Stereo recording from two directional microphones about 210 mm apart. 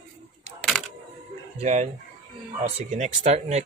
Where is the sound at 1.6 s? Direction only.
35° right (ahead or behind).